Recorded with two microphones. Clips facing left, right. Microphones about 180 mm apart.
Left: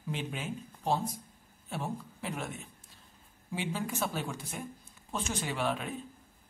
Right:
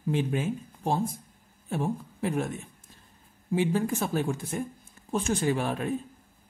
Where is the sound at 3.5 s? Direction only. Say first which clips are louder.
Right 9 dB; 50° right (ahead or behind).